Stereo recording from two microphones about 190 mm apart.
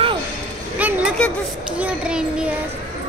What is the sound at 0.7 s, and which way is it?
Speech, 10° right (ahead or behind).